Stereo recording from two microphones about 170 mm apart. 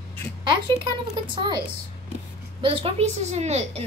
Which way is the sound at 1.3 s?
25° right (ahead or behind).